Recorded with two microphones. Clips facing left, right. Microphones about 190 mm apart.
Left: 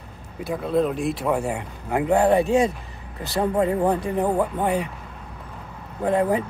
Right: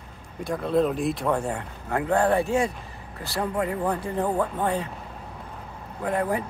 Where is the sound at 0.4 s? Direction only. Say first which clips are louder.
Left 1 dB; centre (ahead or behind).